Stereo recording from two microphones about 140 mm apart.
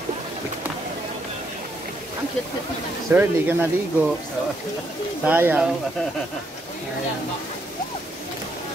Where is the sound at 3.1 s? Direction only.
15° right (ahead or behind).